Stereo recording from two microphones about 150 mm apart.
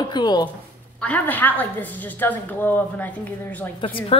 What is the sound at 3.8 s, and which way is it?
Speech, 35° left (ahead or behind).